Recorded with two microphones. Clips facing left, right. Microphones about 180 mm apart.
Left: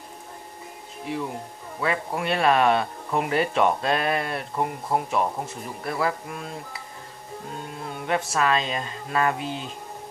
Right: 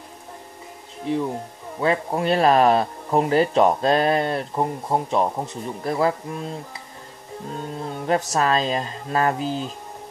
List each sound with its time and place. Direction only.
1.1 s speech: 30° right (ahead or behind)
7.5 s speech: 35° right (ahead or behind)